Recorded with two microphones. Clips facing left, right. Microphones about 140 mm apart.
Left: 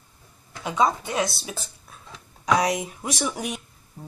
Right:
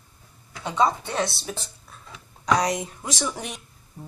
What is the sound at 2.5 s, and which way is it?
Speech, 5° left (ahead or behind).